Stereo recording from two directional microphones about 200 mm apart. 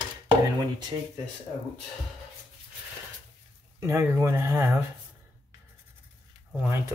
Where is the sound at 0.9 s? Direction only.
20° right (ahead or behind).